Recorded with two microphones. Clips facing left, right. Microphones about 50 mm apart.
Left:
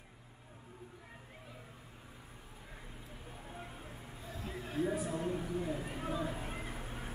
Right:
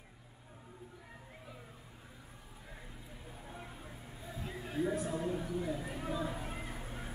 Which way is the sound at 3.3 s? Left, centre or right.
Centre.